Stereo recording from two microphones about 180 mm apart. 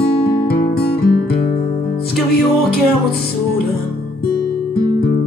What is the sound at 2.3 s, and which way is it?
Music, 60° left (ahead or behind).